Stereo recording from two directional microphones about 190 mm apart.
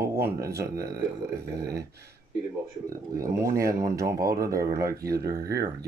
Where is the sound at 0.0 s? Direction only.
15° right (ahead or behind).